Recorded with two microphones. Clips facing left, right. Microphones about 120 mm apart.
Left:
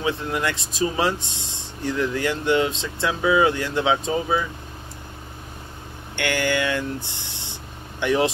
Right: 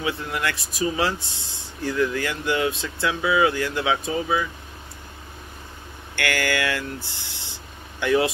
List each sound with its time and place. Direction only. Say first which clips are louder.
0.0 s speech: left 2 dB; 25° left (ahead or behind)
6.1 s speech: left 2 dB; 20° left (ahead or behind)